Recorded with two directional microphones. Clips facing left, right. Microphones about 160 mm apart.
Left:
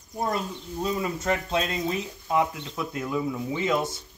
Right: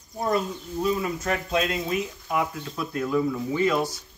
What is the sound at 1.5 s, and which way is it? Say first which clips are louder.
Speech: right 1 dB; 30° left (ahead or behind).